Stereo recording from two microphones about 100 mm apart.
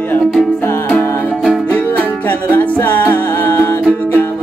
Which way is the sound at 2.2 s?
20° left (ahead or behind).